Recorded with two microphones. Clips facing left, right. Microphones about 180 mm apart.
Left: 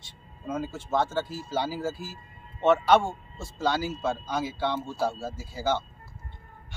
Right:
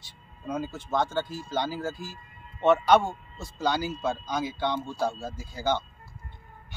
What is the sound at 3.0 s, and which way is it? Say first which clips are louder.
Speech: even; 25° left (ahead or behind).